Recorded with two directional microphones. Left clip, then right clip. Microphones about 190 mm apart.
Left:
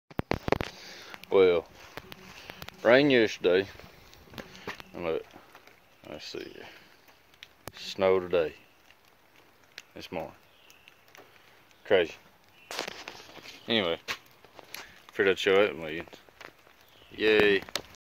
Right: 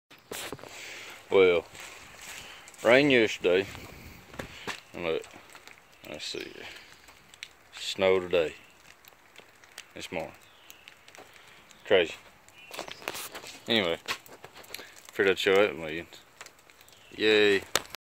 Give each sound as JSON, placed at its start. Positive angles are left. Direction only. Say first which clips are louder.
{"t": 0.7, "sound": "a sound", "louder": "right 4 dB", "side_deg": 10}
{"t": 1.3, "sound": "speech", "louder": "even", "side_deg": 20}
{"t": 2.8, "sound": "speech", "louder": "even", "side_deg": 20}
{"t": 4.6, "sound": "a sound", "louder": "right 1 dB", "side_deg": 10}
{"t": 6.0, "sound": "speech", "louder": "right 3 dB", "side_deg": 10}
{"t": 7.7, "sound": "speech", "louder": "even", "side_deg": 10}
{"t": 9.9, "sound": "speech", "louder": "right 1 dB", "side_deg": 5}
{"t": 11.8, "sound": "speech", "louder": "right 1 dB", "side_deg": 10}
{"t": 13.7, "sound": "speech", "louder": "right 1 dB", "side_deg": -5}
{"t": 17.2, "sound": "speech", "louder": "even", "side_deg": 5}